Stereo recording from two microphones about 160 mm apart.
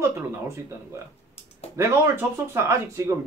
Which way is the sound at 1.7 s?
15° right (ahead or behind).